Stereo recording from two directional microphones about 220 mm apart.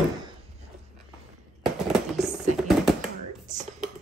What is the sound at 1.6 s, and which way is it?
Fireworks, centre (ahead or behind).